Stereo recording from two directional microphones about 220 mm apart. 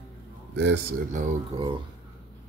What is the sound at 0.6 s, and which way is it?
Speech, 45° right (ahead or behind).